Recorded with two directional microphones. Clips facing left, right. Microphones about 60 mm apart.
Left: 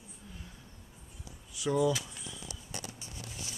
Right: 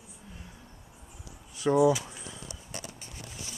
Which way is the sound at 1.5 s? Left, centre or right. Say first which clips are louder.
Right 6 dB; right.